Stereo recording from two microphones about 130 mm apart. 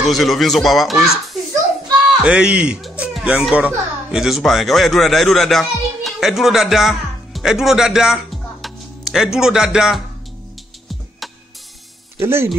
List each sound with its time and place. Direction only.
0.0 s speech: centre (ahead or behind)
2.2 s speech: 5° right (ahead or behind)
12.2 s speech: 20° right (ahead or behind)